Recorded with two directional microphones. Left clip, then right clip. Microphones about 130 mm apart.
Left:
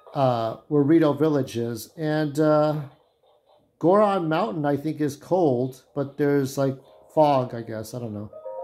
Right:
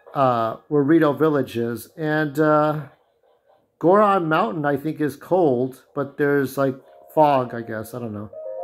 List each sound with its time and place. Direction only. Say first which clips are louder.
0.1 s speech: right 4 dB; 30° left (ahead or behind)
3.8 s speech: right 3 dB; 30° left (ahead or behind)